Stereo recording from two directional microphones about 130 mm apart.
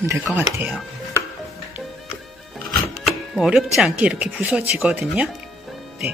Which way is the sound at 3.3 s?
5° right (ahead or behind).